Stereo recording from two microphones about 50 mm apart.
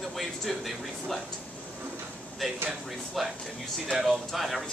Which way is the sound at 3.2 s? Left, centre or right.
Centre.